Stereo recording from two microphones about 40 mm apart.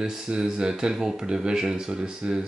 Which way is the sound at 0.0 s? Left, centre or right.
Centre.